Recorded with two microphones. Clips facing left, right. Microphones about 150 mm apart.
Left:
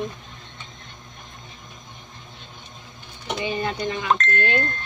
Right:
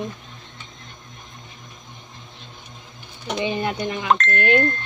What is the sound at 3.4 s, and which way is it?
Speech, 20° right (ahead or behind).